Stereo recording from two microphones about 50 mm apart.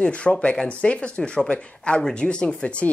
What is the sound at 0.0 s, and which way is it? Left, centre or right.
Speech, left.